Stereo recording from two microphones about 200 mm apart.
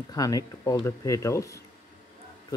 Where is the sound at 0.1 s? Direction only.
15° left (ahead or behind).